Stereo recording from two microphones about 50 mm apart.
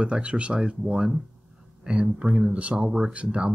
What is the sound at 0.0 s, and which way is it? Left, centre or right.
Speech, right.